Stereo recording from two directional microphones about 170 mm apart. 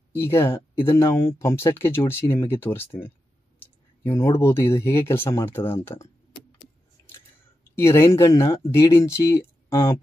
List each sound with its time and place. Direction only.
0.1 s speech: 15° left (ahead or behind)
7.7 s speech: 15° left (ahead or behind)